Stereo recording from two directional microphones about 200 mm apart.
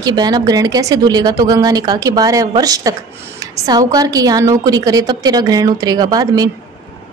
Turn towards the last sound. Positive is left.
turn(degrees=-20)  # may be behind; listen again after turning